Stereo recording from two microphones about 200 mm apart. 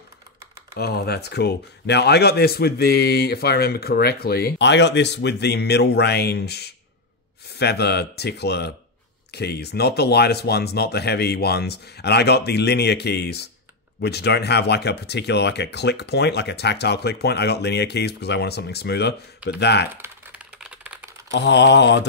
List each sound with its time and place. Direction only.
0.7 s speech: 50° left (ahead or behind)
20.0 s typewriter: 5° right (ahead or behind)
21.3 s speech: 60° left (ahead or behind)